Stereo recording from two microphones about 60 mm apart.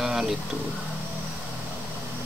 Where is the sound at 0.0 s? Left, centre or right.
Centre.